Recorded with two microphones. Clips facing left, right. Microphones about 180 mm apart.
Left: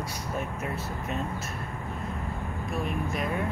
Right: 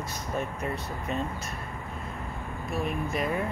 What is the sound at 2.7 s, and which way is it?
Speech, centre (ahead or behind).